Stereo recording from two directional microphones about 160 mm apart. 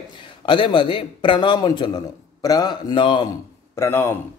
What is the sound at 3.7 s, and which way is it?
Speech, 15° left (ahead or behind).